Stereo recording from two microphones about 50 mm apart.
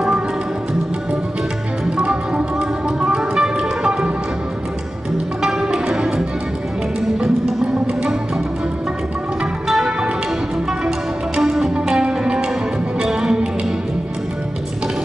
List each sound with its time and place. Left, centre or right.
2.0 s music: centre
5.4 s music: centre
7.8 s music: centre
11.3 s music: centre